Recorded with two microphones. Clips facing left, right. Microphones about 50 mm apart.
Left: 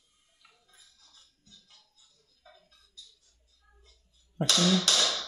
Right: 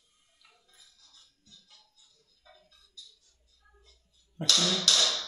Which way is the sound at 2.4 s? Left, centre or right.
Left.